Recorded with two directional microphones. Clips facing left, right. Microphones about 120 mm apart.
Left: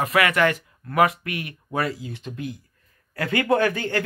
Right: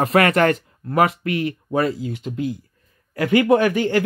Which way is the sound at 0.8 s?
30° right (ahead or behind).